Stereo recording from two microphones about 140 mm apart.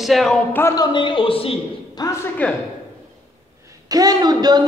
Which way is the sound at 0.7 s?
35° left (ahead or behind).